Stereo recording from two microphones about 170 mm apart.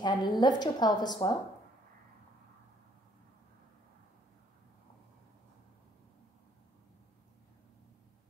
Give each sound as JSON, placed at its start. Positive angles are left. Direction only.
{"t": 0.0, "sound": "a woman's voice", "side_deg": 25}